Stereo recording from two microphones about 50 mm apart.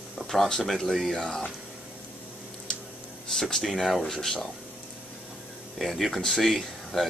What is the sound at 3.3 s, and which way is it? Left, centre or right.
Speech, centre.